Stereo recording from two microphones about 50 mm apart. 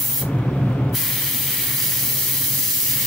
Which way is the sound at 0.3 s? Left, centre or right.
Centre.